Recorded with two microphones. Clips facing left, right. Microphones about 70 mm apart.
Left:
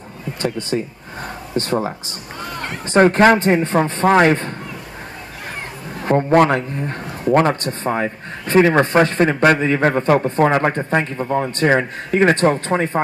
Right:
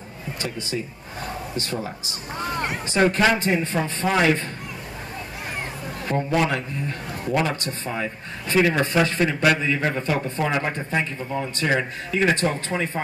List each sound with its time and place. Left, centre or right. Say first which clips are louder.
0.4 s a man's voice: left 8 dB; left
6.0 s a man's voice: left 9 dB; left